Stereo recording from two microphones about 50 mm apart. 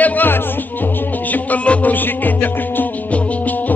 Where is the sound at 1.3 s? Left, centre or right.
Left.